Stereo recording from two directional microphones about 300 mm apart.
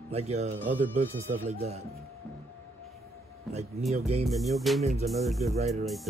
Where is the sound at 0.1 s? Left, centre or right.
Right.